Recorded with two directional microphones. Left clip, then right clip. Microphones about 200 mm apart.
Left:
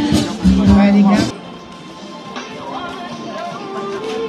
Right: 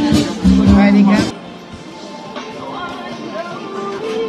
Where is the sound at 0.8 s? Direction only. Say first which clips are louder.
Right 1 dB; 20° right (ahead or behind).